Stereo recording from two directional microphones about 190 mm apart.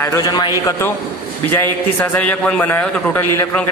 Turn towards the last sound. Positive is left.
turn(degrees=10)  # may be behind; listen again after turning